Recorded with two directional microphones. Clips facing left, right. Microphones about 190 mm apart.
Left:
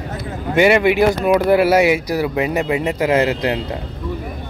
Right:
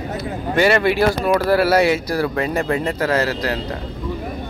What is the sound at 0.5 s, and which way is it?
Speech, 15° left (ahead or behind).